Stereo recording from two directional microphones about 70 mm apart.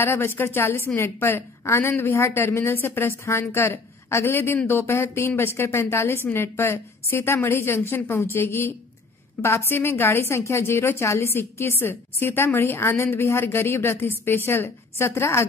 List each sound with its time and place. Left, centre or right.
0.0 s a woman's voice: left